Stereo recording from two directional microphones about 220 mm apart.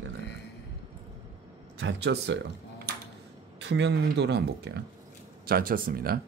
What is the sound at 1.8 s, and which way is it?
Speech, 55° right (ahead or behind).